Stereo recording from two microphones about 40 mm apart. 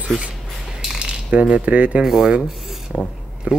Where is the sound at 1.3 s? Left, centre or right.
Right.